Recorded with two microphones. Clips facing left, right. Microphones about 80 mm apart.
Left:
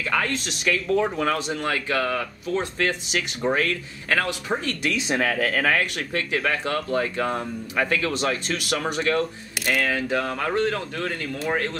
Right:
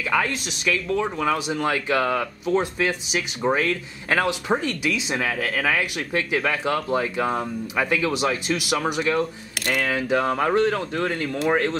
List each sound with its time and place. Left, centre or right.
0.1 s speech: centre
1.6 s speech: right
2.8 s speech: centre
4.1 s speech: right
5.0 s speech: centre
10.2 s speech: right
10.5 s speech: centre
11.4 s speech: right